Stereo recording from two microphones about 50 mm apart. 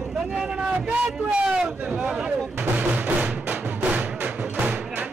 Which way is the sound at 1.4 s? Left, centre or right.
Centre.